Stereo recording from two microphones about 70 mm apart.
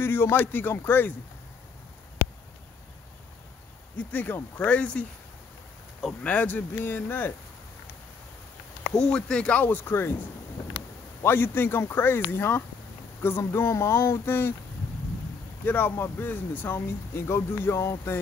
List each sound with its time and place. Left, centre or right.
0.0 s speech: left
3.9 s speech: left
6.2 s speech: left
8.9 s speech: centre; by 10.1 s left
11.2 s speech: left
15.6 s speech: left